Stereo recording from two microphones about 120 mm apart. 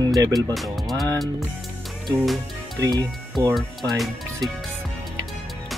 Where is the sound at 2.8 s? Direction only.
30° right (ahead or behind).